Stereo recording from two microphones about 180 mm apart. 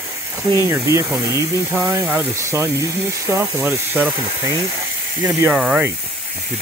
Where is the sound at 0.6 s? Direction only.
15° right (ahead or behind).